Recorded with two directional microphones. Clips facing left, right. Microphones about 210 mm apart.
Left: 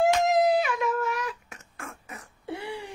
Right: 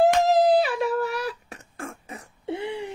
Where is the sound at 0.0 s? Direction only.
35° right (ahead or behind).